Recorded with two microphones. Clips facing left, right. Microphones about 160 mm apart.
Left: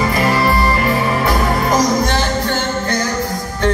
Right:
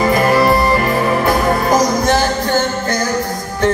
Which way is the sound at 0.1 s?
50° right (ahead or behind).